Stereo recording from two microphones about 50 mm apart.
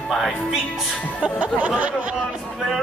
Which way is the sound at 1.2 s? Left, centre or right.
Right.